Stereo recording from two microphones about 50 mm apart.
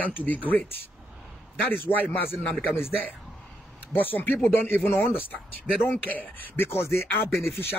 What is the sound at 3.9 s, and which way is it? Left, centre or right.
Speech, left.